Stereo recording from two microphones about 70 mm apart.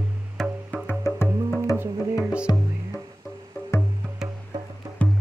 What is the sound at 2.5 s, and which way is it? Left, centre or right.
Music, left.